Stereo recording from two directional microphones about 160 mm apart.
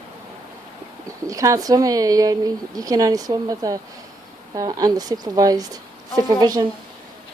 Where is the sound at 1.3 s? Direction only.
20° right (ahead or behind).